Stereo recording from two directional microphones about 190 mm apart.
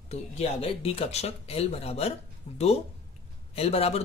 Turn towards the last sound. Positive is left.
turn(degrees=30)  # may be behind; listen again after turning